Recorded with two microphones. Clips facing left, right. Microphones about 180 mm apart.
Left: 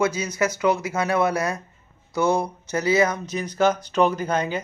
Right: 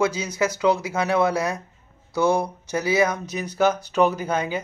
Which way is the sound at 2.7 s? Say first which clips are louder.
Left 1 dB; 10° right (ahead or behind).